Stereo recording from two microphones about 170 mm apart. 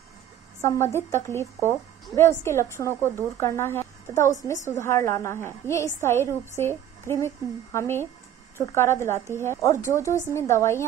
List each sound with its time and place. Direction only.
0.6 s speech: 15° left (ahead or behind)